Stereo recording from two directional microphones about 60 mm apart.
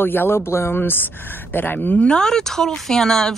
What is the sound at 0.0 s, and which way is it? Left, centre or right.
Speech, left.